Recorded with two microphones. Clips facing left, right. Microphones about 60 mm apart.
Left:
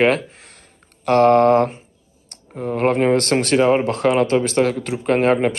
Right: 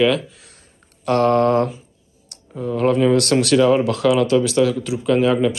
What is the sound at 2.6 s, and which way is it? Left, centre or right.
Speech, left.